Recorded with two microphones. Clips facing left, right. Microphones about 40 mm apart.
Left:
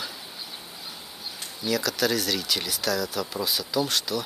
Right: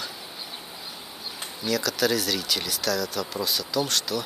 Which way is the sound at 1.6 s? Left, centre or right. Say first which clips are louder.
Even; centre.